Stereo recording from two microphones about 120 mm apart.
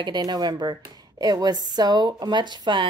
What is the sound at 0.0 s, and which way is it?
A woman's voice, 35° right (ahead or behind).